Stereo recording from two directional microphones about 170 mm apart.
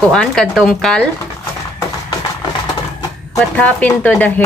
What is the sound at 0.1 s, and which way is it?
Speech, 5° left (ahead or behind).